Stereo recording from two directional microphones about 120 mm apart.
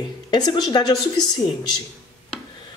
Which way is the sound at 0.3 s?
40° left (ahead or behind).